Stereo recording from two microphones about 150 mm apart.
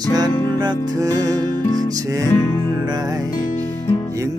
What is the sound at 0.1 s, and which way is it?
Music, 30° right (ahead or behind).